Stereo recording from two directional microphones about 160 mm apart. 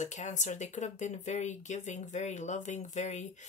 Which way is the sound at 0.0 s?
50° left (ahead or behind).